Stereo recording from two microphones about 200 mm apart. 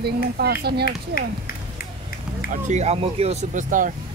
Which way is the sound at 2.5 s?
35° right (ahead or behind).